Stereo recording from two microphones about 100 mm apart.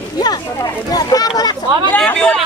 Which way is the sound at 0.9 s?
40° left (ahead or behind).